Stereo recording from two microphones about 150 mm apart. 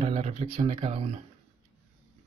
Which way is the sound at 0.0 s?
45° right (ahead or behind).